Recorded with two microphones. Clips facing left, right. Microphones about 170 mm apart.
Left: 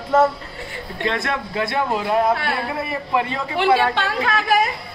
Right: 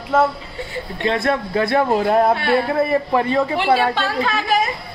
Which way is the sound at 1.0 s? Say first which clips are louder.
Right 4 dB; 30° right (ahead or behind).